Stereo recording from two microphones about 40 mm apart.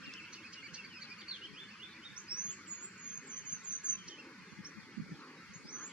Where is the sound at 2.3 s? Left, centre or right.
Left.